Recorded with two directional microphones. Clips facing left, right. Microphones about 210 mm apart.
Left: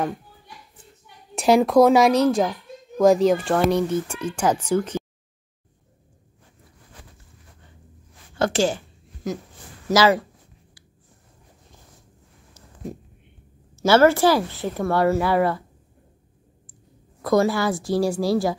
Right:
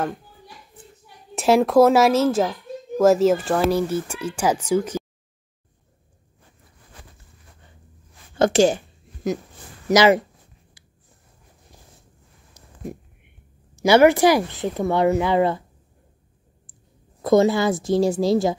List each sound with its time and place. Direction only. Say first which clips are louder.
1.3 s speech: even; centre (ahead or behind)
8.4 s a sound: right 5 dB; 20° right (ahead or behind)
9.8 s speech: right 2 dB; 20° right (ahead or behind)
12.5 s a sound: even; 15° right (ahead or behind)
13.7 s speech: right 2 dB; 15° right (ahead or behind)
17.2 s speech: right 3 dB; 20° right (ahead or behind)